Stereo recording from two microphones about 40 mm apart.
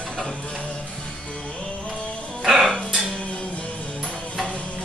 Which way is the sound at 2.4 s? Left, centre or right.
Centre.